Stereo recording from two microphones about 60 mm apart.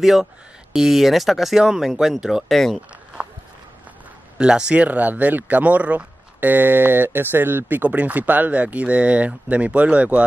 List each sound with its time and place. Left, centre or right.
0.0 s speech: centre
2.5 s speech: centre
4.4 s speech: centre; by 7.6 s right
7.6 s speech: right